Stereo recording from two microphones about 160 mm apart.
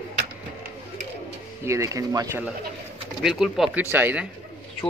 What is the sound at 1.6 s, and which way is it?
Speech, 20° right (ahead or behind).